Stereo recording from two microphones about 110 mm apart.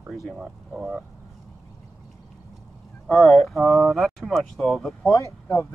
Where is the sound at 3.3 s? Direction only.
Centre (ahead or behind).